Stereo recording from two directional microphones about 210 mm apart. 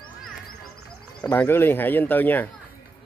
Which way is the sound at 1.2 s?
10° left (ahead or behind).